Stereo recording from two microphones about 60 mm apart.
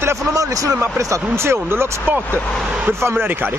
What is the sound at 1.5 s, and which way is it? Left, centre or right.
Speech, right.